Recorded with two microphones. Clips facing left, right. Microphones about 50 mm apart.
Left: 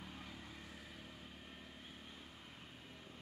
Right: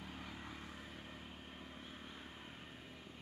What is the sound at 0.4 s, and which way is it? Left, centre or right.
Vehicle, right.